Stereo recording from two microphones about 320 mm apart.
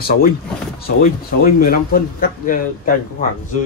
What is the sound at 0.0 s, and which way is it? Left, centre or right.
A man's voice, left.